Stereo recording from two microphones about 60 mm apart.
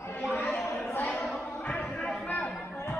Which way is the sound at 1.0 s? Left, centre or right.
Left.